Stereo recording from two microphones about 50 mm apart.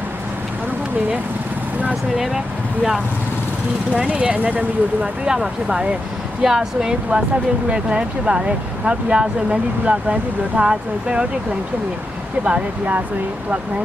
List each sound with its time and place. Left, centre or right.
2.1 s speech: centre
3.9 s speech: right
5.2 s speech: centre
12.4 s speech: right